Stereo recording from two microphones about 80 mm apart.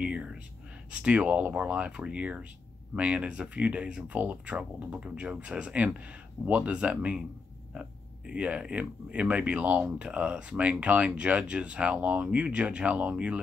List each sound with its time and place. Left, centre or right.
0.0 s whispering: centre
1.0 s speech: centre